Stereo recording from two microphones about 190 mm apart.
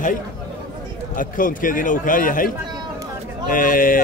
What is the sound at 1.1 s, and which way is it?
A man's voice, 45° left (ahead or behind).